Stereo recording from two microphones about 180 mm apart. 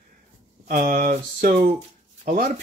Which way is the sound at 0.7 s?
55° right (ahead or behind).